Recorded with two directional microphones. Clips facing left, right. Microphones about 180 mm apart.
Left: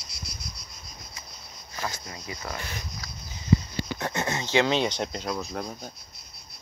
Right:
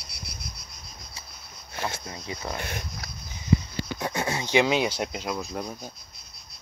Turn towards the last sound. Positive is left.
turn(degrees=-5)  # may be behind; listen again after turning